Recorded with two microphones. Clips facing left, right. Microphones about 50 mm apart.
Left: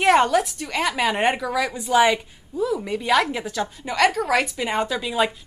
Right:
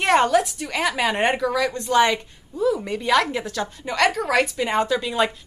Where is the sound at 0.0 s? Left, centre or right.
Centre.